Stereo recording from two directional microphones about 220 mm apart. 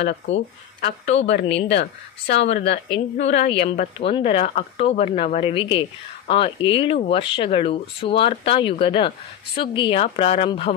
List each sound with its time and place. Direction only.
0.0 s a woman's voice: 50° left (ahead or behind)
3.6 s speech: 30° left (ahead or behind)